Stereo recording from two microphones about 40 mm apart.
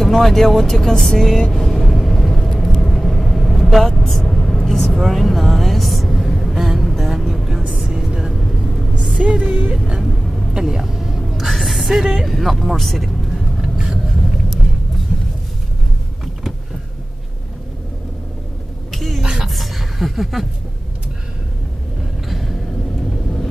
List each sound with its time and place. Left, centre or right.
0.0 s speech: centre
1.5 s vehicle: centre
4.9 s a sound: centre
6.5 s a sound: centre
6.8 s music: centre
7.6 s vehicle: centre
8.3 s vehicle: centre
9.2 s music: right
10.0 s vehicle: centre
10.5 s a sound: centre
12.3 s speech: centre
13.6 s vehicle: centre
18.9 s a sound: centre